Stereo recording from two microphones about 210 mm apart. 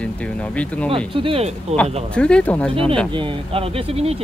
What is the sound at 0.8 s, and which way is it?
Speech, 25° right (ahead or behind).